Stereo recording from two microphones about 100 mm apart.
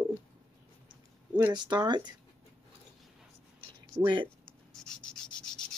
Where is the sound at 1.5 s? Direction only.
50° right (ahead or behind).